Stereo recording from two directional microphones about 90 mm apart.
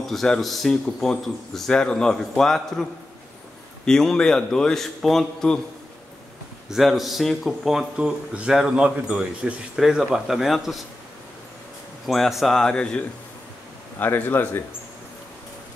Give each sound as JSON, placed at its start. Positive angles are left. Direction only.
{"t": 0.0, "sound": "a man's voice", "side_deg": 5}
{"t": 6.7, "sound": "speech", "side_deg": 0}
{"t": 12.1, "sound": "speech", "side_deg": 0}
{"t": 13.9, "sound": "speech", "side_deg": 20}